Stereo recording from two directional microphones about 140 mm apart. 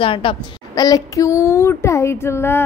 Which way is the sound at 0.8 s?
25° left (ahead or behind).